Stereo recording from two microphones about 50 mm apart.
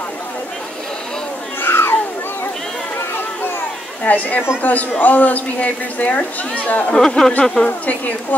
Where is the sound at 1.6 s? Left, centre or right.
Left.